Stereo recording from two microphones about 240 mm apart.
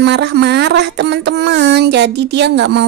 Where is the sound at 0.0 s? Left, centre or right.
Right.